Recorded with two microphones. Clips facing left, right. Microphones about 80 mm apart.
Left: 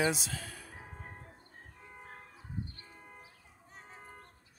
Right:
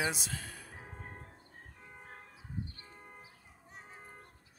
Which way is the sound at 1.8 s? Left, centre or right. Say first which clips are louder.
Left 2 dB; centre.